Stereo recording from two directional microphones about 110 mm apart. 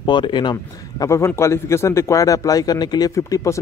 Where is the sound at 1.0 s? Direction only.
25° left (ahead or behind).